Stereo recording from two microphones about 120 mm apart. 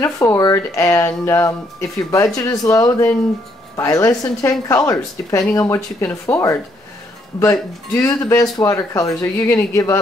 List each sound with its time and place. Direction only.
0.0 s a woman's voice: 25° left (ahead or behind)
7.9 s a woman's voice: 25° left (ahead or behind)